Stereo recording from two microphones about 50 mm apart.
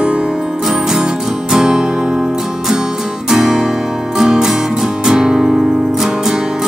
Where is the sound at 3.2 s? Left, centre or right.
Centre.